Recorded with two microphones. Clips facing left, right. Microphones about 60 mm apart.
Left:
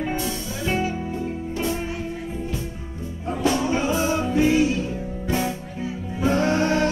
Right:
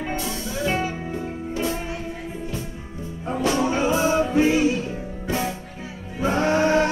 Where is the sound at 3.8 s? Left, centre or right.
Right.